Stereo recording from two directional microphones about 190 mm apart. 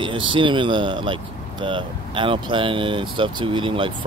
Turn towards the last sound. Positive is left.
turn(degrees=-25)  # may be behind; listen again after turning